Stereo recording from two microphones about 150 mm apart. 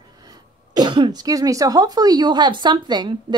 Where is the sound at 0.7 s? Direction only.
30° right (ahead or behind).